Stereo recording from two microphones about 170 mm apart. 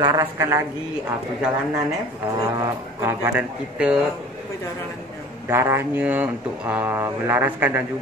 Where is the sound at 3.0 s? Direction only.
10° right (ahead or behind).